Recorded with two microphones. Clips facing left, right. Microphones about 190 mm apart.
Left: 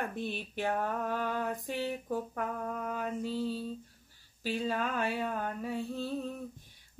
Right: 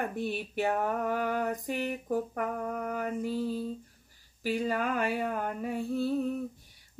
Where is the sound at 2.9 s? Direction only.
15° right (ahead or behind).